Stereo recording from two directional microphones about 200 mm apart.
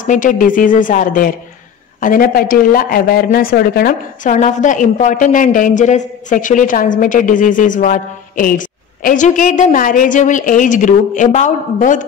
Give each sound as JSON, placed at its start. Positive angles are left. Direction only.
{"t": 0.0, "sound": "speech", "side_deg": 40}